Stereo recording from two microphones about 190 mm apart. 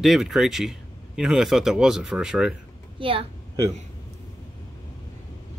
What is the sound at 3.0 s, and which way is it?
Speech, 25° right (ahead or behind).